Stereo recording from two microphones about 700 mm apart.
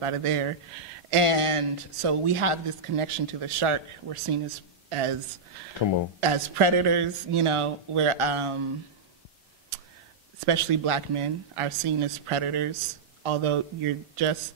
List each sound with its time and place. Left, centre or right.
0.0 s speech: right
4.8 s a sound: right
6.2 s speech: right
10.4 s speech: right